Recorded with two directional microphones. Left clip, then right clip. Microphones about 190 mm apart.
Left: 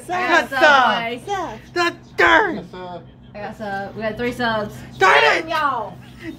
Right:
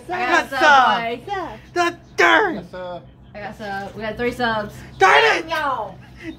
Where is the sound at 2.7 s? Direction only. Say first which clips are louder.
Right 2 dB; 35° right (ahead or behind).